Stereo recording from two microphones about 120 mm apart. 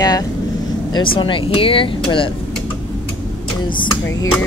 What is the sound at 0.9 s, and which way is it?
Speech, 45° left (ahead or behind).